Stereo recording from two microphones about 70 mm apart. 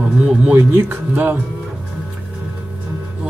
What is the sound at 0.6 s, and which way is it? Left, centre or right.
Speech, right.